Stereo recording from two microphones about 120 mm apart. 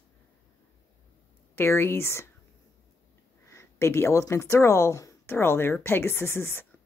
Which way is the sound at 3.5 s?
25° left (ahead or behind).